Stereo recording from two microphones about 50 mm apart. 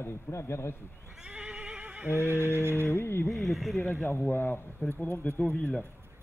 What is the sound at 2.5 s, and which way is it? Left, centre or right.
Music, right.